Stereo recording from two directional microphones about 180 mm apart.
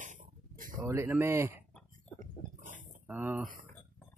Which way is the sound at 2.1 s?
45° right (ahead or behind).